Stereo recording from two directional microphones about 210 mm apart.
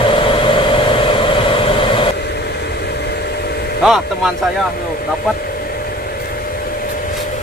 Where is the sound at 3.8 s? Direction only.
Centre (ahead or behind).